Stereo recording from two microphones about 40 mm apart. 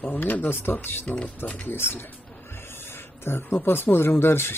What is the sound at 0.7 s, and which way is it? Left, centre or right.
Speech, left.